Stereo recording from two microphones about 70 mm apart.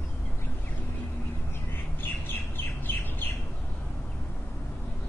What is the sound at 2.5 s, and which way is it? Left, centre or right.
Bird, left.